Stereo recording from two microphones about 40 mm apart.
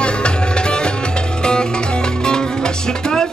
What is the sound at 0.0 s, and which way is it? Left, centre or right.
Music, left.